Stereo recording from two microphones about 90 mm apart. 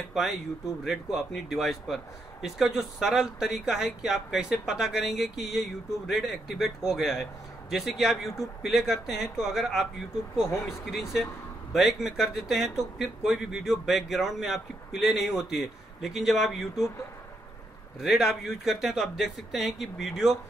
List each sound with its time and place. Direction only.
0.1 s speech: centre (ahead or behind)
10.9 s speech: 5° right (ahead or behind)
18.0 s speech: 5° right (ahead or behind)